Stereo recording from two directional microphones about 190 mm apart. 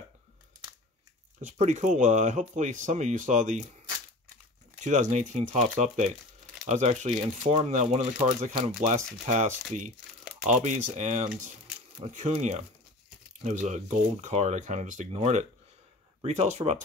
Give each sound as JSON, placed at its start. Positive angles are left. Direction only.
{"t": 1.4, "sound": "speech", "side_deg": -40}
{"t": 4.8, "sound": "speech", "side_deg": -40}